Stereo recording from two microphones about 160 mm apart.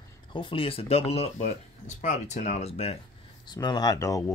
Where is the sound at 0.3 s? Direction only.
30° left (ahead or behind).